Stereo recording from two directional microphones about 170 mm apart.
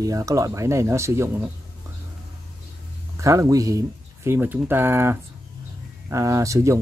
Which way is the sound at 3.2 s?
20° right (ahead or behind).